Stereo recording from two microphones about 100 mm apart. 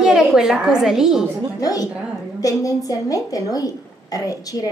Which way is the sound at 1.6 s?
35° left (ahead or behind).